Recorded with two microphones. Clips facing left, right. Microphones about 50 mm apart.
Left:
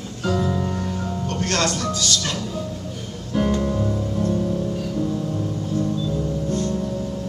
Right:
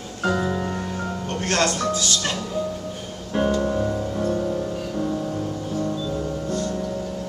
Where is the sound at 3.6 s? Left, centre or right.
Right.